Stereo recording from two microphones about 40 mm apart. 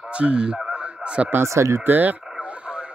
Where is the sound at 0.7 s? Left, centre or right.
Right.